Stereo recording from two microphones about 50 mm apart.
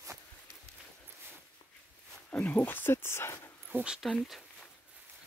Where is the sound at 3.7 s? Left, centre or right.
Right.